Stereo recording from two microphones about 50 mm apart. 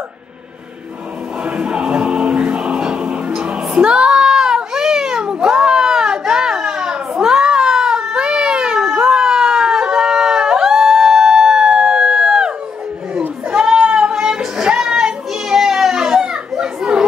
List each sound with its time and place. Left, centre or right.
1.4 s music: centre
13.5 s a sound: centre
13.9 s music: centre